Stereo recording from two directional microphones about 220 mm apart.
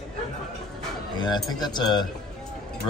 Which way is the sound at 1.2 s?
20° left (ahead or behind).